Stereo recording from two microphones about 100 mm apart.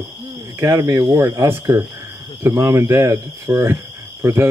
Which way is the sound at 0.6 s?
30° right (ahead or behind).